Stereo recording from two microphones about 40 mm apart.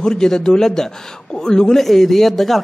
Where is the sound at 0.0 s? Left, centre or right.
Centre.